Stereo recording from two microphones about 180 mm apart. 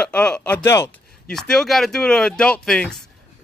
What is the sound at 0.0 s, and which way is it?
Speech, 5° left (ahead or behind).